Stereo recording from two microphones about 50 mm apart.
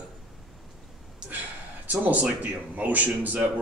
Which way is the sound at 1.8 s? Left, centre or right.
Right.